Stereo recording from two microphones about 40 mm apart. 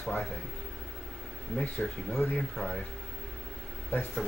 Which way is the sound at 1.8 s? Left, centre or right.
Centre.